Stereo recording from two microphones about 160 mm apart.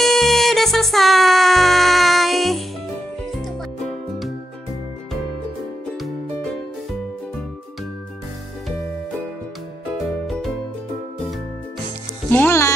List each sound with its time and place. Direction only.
0.0 s music: centre (ahead or behind)
5.9 s music: centre (ahead or behind)
10.2 s music: centre (ahead or behind)
12.3 s music: 15° left (ahead or behind)